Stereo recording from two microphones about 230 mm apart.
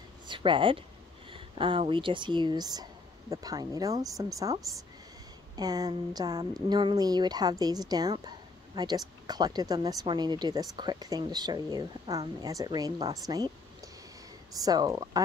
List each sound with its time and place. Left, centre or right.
0.3 s speech: right
13.3 s a sound: centre
14.6 s speech: centre